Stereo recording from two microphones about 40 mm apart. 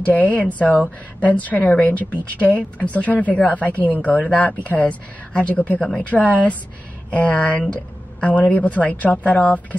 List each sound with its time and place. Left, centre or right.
0.1 s a woman's voice: left
5.8 s a woman's voice: centre
6.0 s a woman's voice: left